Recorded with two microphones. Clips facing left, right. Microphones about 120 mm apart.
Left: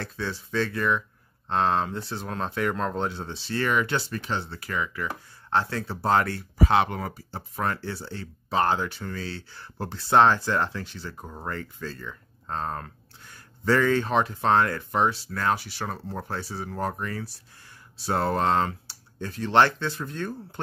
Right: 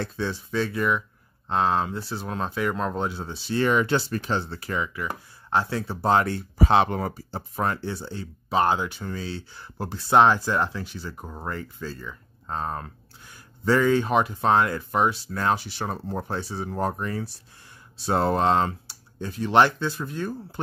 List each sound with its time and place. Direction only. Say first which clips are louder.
0.0 s speech: right 4 dB; 20° right (ahead or behind)
3.8 s speech: right 4 dB; 35° right (ahead or behind); by 20.6 s 10° right (ahead or behind)